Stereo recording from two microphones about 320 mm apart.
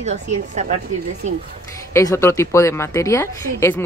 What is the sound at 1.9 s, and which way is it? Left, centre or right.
A woman's voice, centre.